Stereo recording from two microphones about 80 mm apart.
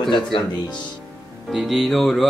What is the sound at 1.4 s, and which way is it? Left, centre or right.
Speech, centre.